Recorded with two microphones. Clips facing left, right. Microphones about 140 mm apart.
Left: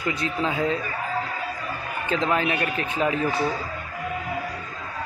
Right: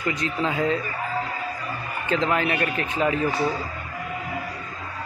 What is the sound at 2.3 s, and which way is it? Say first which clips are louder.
Speech: even; 15° left (ahead or behind).